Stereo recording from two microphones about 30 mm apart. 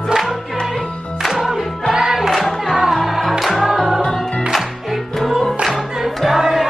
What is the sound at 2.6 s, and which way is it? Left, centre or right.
Music, centre.